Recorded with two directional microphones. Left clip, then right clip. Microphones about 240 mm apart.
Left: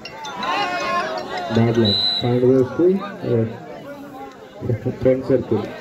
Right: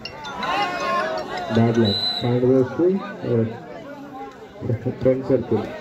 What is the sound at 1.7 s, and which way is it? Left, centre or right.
Speech, left.